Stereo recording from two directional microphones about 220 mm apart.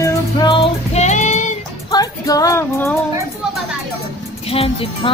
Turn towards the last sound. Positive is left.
turn(degrees=25)  # may be behind; listen again after turning